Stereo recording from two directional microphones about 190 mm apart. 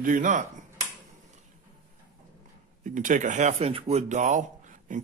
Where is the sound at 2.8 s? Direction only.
40° right (ahead or behind).